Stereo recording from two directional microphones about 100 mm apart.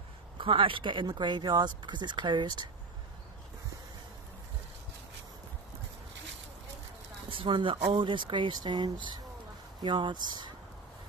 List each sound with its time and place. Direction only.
0.4 s speech: 60° right (ahead or behind)
7.2 s speech: 55° right (ahead or behind)